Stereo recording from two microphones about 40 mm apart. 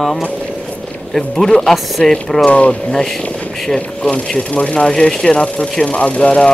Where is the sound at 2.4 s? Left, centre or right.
Left.